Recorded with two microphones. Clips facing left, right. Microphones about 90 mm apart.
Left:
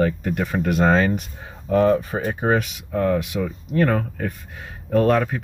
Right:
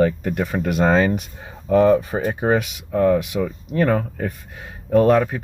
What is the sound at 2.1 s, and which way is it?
Speech, 10° right (ahead or behind).